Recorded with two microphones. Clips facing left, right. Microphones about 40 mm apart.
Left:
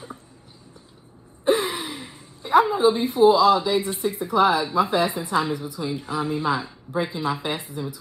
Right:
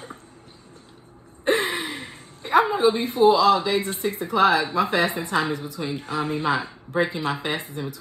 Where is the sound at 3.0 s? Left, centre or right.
Right.